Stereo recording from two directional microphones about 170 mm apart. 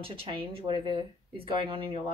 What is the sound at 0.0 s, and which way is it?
A woman's voice, 30° right (ahead or behind).